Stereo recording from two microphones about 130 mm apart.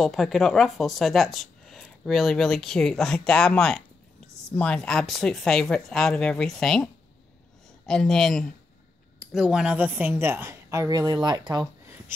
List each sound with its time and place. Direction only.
0.0 s a woman's voice: centre (ahead or behind); by 11.6 s 35° right (ahead or behind)